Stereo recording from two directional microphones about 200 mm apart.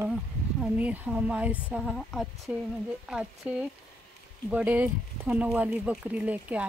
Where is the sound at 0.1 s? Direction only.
5° right (ahead or behind).